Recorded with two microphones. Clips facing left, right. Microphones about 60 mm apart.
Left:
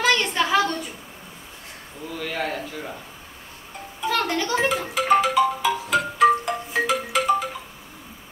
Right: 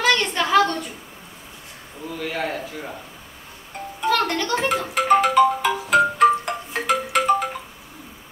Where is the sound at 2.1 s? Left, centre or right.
Centre.